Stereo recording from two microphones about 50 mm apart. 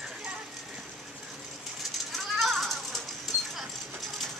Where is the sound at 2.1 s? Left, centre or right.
Centre.